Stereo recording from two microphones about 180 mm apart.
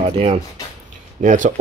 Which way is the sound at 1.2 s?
45° right (ahead or behind).